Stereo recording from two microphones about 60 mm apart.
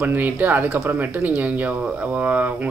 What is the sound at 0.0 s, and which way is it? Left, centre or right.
Speech, right.